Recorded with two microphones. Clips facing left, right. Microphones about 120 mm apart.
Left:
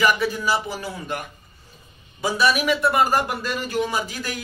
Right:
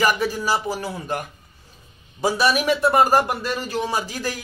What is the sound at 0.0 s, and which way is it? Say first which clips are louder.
Speech: even; 40° right (ahead or behind).